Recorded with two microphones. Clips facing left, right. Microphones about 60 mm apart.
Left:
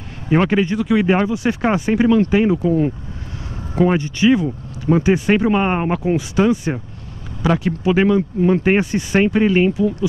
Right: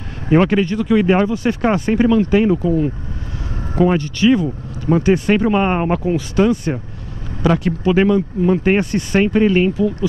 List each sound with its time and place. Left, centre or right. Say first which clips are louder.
0.3 s speech: right 2 dB; centre
8.2 s speech: even; left
8.6 s speech: even; centre